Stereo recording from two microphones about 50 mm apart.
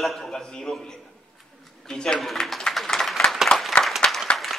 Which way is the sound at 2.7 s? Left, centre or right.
Centre.